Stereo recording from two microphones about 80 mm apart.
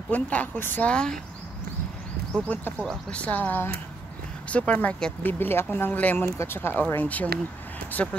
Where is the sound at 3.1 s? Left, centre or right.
Centre.